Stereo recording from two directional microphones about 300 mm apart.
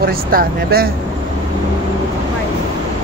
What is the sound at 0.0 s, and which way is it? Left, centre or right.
Speech, right.